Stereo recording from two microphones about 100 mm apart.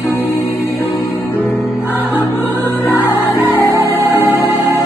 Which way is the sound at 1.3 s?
20° left (ahead or behind).